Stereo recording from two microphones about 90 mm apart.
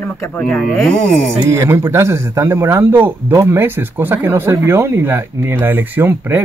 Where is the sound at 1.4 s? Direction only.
35° right (ahead or behind).